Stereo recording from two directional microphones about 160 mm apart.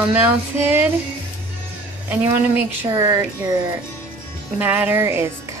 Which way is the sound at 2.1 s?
10° right (ahead or behind).